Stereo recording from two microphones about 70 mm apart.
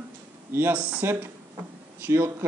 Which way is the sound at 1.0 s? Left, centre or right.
Right.